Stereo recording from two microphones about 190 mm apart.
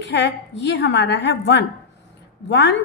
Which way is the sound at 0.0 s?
65° left (ahead or behind).